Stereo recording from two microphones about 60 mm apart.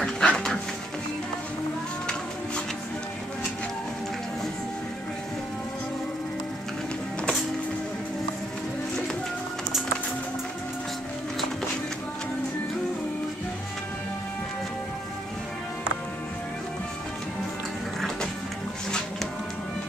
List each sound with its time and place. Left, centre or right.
0.0 s dog: centre